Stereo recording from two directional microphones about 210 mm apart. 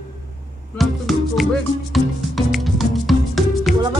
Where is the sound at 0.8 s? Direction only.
Centre (ahead or behind).